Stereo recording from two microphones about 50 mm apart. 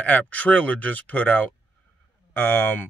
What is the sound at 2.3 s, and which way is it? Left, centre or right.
Speech, left.